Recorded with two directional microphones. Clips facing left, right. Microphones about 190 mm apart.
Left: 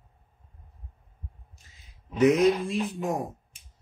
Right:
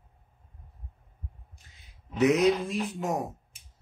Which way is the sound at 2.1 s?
Centre (ahead or behind).